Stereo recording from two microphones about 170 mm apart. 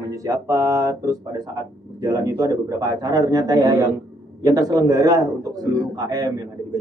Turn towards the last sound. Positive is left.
turn(degrees=-20)  # may be behind; listen again after turning